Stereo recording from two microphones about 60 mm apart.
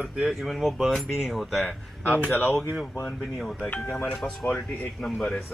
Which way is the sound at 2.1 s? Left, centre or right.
Left.